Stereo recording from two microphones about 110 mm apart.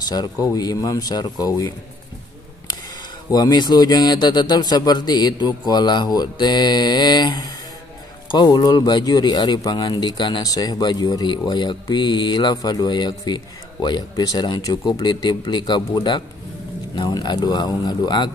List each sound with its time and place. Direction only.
0.1 s speech: 35° left (ahead or behind)
3.3 s speech: 35° left (ahead or behind)